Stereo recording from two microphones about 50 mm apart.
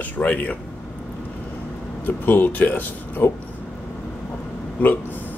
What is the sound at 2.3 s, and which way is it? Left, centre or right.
Speech, left.